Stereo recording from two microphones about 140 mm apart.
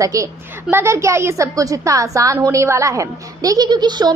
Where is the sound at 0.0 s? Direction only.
25° right (ahead or behind).